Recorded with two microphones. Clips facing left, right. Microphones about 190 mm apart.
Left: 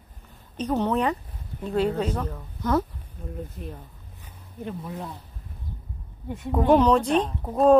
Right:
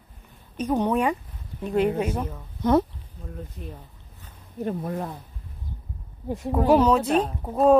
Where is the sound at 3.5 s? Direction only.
5° left (ahead or behind).